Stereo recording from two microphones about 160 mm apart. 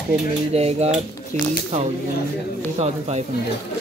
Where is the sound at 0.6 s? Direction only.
40° right (ahead or behind).